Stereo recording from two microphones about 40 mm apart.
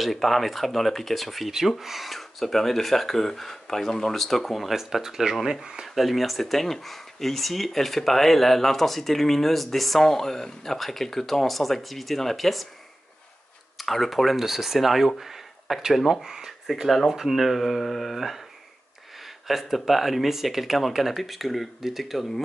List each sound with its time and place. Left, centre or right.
0.0 s speech: centre
13.7 s speech: centre
19.4 s speech: centre